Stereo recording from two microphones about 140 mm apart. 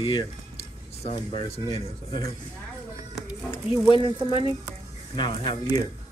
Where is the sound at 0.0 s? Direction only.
35° left (ahead or behind).